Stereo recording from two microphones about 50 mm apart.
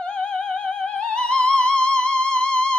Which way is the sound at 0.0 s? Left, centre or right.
Centre.